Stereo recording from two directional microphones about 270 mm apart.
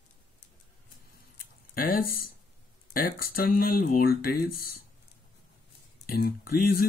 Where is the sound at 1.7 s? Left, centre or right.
Left.